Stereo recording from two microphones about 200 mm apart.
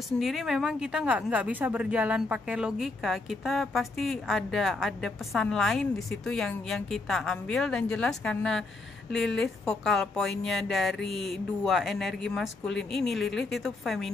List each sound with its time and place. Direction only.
0.2 s speech: centre (ahead or behind)